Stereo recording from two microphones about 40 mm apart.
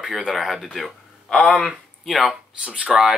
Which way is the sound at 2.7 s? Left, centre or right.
Right.